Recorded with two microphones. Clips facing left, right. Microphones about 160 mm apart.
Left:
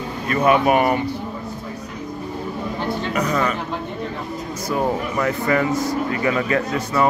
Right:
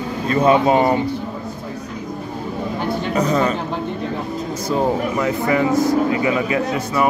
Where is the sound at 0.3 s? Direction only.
25° right (ahead or behind).